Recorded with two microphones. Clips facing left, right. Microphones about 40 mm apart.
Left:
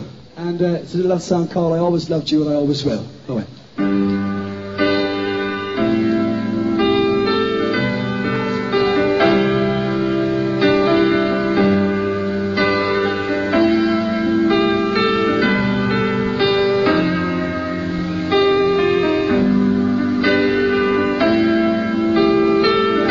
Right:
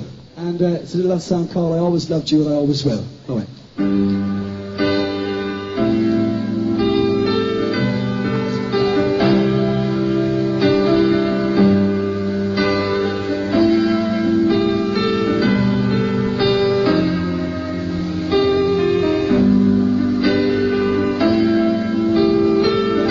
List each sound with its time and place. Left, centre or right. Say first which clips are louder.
1.3 s speech: left 1 dB; left
5.8 s music: right 1 dB; left
8.7 s music: left 1 dB; left
9.0 s music: left 1 dB; left
10.7 s music: even; left
12.5 s music: left 2 dB; left
13.7 s music: even; centre
14.3 s music: left 1 dB; left
16.3 s music: even; left
18.3 s music: left 1 dB; left